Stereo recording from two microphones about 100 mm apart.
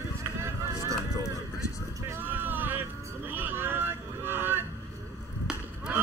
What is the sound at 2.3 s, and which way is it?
Vehicle, 20° right (ahead or behind).